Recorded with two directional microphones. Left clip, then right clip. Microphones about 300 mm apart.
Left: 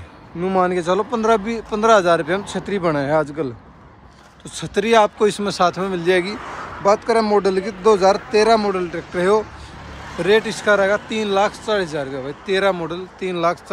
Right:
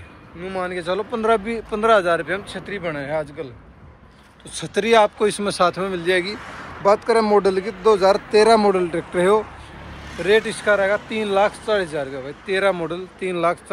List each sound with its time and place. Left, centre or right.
0.4 s speech: left
4.6 s speech: centre
10.5 s speech: centre